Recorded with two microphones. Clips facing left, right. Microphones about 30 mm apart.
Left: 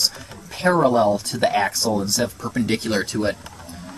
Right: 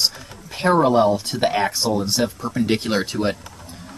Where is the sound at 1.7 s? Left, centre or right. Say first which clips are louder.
Right 1 dB; right.